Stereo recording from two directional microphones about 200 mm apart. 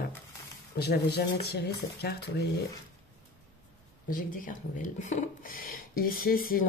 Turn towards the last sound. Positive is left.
turn(degrees=45)  # may be behind; listen again after turning